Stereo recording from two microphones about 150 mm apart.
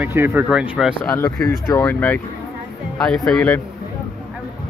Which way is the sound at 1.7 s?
20° left (ahead or behind).